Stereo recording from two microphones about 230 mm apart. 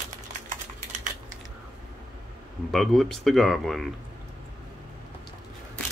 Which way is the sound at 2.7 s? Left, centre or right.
Centre.